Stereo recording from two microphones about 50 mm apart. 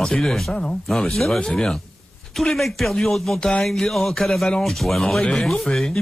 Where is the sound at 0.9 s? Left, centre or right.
Centre.